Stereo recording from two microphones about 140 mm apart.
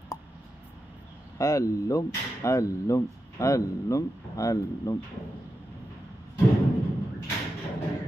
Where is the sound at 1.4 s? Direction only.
20° left (ahead or behind).